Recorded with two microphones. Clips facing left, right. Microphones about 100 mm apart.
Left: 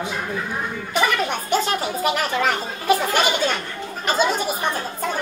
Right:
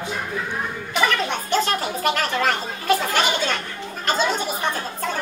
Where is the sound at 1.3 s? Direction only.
10° left (ahead or behind).